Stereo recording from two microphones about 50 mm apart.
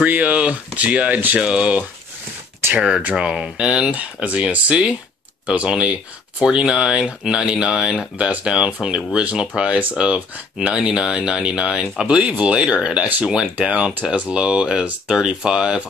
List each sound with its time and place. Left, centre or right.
0.0 s speech: right